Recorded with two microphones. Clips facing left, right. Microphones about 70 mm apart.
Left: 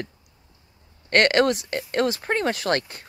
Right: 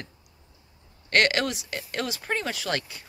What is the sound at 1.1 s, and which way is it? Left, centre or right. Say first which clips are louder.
Speech: left 5 dB; left.